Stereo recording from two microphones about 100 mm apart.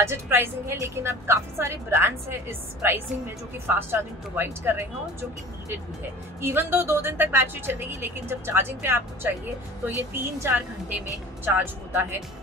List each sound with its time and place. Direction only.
0.0 s a woman's voice: 25° right (ahead or behind)
6.4 s a woman's voice: 20° right (ahead or behind)